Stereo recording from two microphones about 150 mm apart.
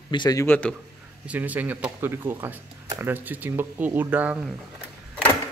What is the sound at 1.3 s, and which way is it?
Speech, 10° right (ahead or behind).